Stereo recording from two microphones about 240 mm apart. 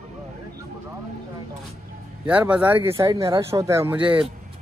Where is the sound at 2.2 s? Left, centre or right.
Centre.